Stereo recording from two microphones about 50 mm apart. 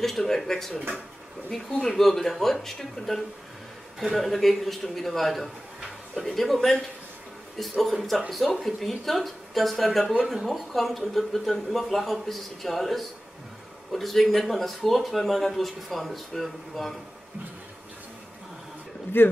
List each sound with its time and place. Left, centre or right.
0.0 s speech: centre
7.8 s speech: centre
19.1 s speech: left